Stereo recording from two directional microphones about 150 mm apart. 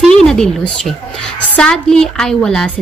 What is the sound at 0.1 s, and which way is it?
A woman's voice, 5° left (ahead or behind).